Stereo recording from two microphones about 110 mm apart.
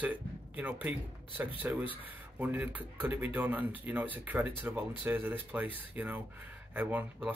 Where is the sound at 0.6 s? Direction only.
15° right (ahead or behind).